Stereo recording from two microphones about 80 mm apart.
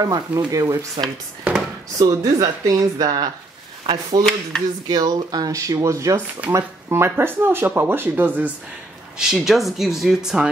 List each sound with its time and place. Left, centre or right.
0.0 s speech: right
1.0 s speech: right
2.0 s speech: right
4.2 s speech: centre
4.8 s speech: right
9.2 s speech: centre